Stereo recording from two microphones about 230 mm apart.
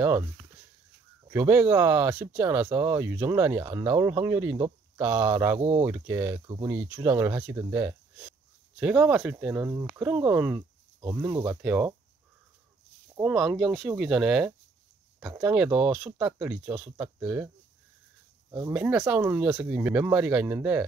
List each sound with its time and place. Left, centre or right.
1.2 s speech: centre
5.6 s speech: right
5.9 s speech: centre
13.1 s speech: centre
18.7 s speech: centre